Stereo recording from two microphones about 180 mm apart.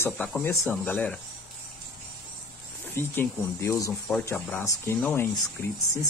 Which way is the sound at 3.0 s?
15° left (ahead or behind).